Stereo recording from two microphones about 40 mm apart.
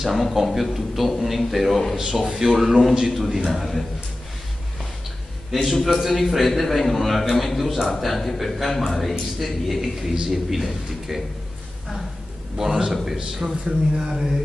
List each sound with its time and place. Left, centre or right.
0.0 s a man's voice: centre
2.0 s a man's voice: centre
5.5 s a man's voice: centre
12.5 s speech: centre